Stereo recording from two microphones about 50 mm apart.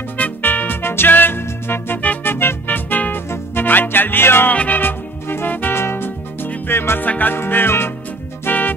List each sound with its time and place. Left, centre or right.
0.2 s music: left
4.5 s music: left
7.1 s music: left
7.3 s music: left
8.5 s music: left